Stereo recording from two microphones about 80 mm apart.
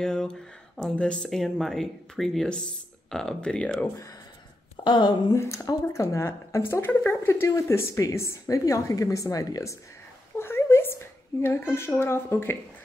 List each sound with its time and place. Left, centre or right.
0.0 s speech: centre
4.8 s speech: left
5.3 s a woman's voice: left
10.3 s a sound: left